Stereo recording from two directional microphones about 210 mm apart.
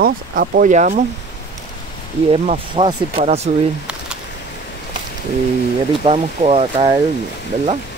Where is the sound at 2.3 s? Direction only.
25° right (ahead or behind).